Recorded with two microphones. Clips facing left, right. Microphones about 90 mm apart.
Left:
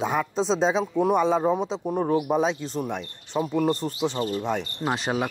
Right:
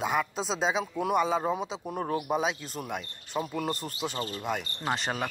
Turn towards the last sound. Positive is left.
turn(degrees=5)  # may be behind; listen again after turning